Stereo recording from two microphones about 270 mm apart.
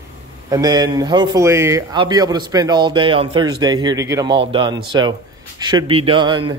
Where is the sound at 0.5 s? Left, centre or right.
Centre.